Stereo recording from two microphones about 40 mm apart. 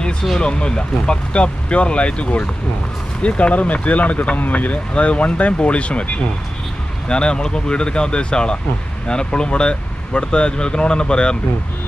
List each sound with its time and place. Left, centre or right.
0.4 s speech: left
7.1 s speech: left